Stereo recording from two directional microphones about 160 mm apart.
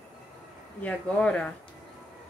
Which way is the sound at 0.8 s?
10° left (ahead or behind).